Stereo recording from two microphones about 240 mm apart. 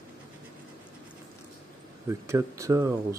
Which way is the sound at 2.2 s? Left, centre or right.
Centre.